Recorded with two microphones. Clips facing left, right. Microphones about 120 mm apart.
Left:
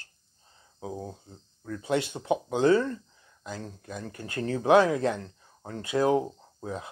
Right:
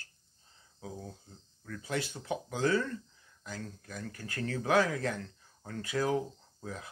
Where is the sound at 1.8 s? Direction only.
20° left (ahead or behind).